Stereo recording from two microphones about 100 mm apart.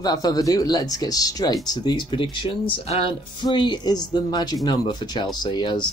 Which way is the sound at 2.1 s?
60° left (ahead or behind).